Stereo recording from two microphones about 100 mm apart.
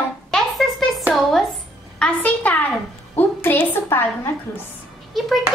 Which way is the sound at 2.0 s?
10° left (ahead or behind).